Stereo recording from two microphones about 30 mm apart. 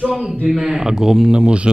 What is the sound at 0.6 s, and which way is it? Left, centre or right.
Speech, centre.